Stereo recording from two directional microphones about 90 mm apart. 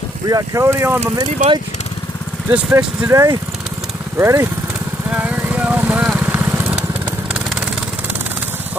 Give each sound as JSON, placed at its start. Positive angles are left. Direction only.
{"t": 0.3, "sound": "speech", "side_deg": -45}
{"t": 0.7, "sound": "speech", "side_deg": -25}
{"t": 1.1, "sound": "speech", "side_deg": -60}
{"t": 2.8, "sound": "speech", "side_deg": -35}
{"t": 4.2, "sound": "speech", "side_deg": -35}
{"t": 5.1, "sound": "vehicle", "side_deg": -15}